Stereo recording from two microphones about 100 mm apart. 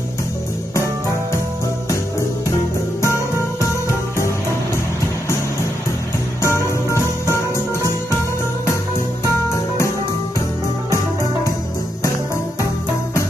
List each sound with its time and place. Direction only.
6.4 s music: 30° left (ahead or behind)